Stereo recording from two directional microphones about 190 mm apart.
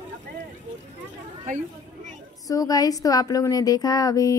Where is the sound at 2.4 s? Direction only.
20° left (ahead or behind).